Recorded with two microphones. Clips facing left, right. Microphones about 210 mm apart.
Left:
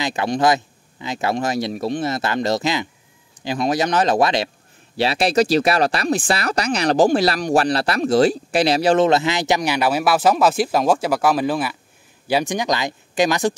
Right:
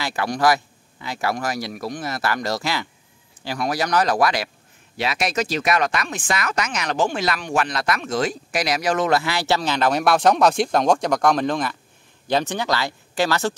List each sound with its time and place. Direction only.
0.0 s speech: 20° left (ahead or behind)